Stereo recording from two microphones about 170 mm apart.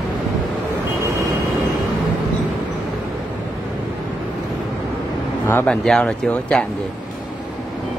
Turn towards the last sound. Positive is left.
turn(degrees=5)  # may be behind; listen again after turning